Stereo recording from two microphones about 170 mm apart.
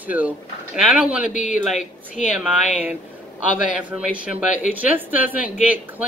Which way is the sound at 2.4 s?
5° right (ahead or behind).